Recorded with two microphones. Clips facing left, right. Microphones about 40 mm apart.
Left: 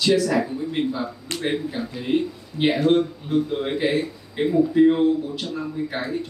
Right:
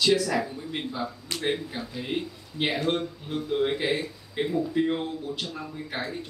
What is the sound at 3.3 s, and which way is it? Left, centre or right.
Speech, centre.